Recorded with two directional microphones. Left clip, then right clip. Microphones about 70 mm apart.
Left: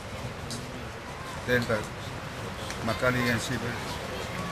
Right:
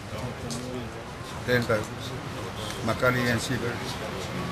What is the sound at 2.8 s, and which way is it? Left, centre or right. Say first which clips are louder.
Speech: right 2 dB; centre.